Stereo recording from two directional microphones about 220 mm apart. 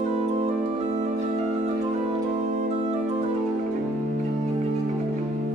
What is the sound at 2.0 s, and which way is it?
Music, 30° right (ahead or behind).